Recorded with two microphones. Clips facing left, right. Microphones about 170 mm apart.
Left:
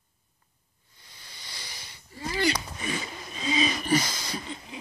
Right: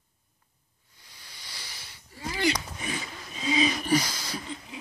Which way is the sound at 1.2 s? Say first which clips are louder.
Left 1 dB; 10° right (ahead or behind).